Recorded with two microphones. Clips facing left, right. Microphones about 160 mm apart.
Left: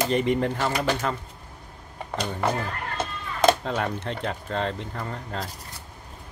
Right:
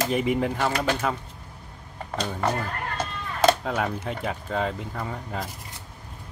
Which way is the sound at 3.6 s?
5° right (ahead or behind).